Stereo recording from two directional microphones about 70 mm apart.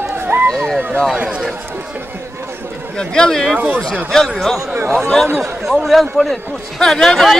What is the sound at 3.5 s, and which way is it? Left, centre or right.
Speech, centre.